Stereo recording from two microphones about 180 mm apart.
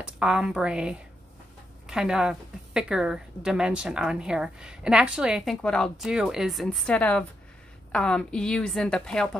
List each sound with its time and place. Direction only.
0.0 s a woman's voice: 5° right (ahead or behind)